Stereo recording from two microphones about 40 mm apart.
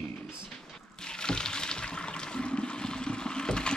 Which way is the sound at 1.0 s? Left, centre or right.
Left.